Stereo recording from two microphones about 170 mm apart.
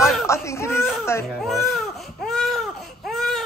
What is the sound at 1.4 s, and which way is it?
Baby cry, centre (ahead or behind).